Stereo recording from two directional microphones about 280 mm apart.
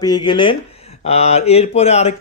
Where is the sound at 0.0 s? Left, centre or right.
Centre.